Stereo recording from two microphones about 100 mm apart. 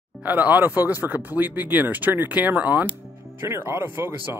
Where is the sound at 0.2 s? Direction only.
15° right (ahead or behind).